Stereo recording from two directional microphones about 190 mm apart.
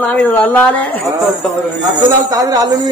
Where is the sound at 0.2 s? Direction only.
5° left (ahead or behind).